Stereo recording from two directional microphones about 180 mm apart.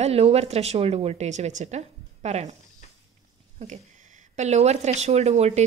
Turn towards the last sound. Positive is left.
turn(degrees=-35)  # may be behind; listen again after turning